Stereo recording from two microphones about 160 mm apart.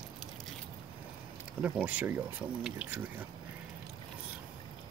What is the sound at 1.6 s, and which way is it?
Speech, 10° right (ahead or behind).